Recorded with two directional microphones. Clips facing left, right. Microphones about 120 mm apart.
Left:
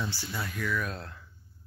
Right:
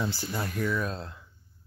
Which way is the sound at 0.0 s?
45° right (ahead or behind).